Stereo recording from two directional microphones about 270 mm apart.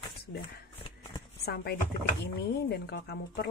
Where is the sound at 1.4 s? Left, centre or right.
Left.